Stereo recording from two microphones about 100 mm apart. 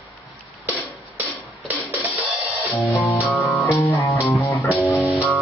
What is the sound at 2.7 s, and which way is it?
Music, 20° left (ahead or behind).